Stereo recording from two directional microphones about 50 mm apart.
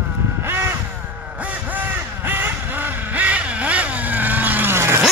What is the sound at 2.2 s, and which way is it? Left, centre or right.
Vehicle, right.